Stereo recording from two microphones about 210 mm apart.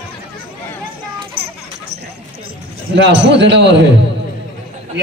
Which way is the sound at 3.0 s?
55° right (ahead or behind).